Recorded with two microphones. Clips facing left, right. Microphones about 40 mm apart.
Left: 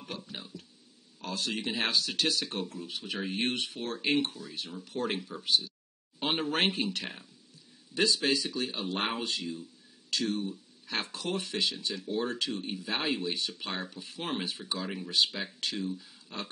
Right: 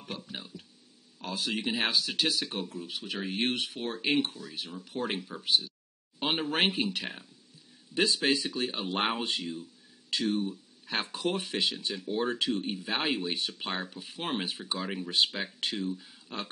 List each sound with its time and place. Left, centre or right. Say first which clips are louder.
0.0 s a sound: right 1 dB; centre
1.6 s speech: right 1 dB; centre
7.9 s speech: right 1 dB; right
15.9 s speech: right 2 dB; centre